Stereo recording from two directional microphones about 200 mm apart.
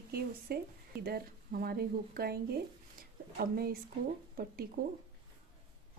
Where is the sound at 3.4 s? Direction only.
50° right (ahead or behind).